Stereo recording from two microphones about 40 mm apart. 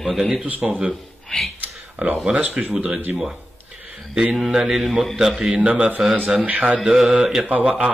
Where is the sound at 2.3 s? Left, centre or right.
Right.